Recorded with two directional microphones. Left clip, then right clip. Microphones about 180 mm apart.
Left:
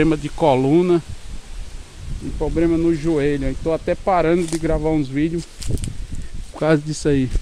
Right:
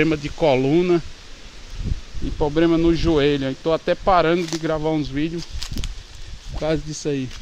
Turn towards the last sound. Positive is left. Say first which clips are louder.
# left 6 dB
turn(degrees=50)  # may be behind; listen again after turning